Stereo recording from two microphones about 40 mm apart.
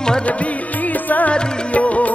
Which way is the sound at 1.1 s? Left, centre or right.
Left.